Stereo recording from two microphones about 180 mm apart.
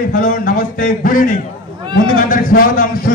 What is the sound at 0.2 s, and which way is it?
A man's voice, 50° left (ahead or behind).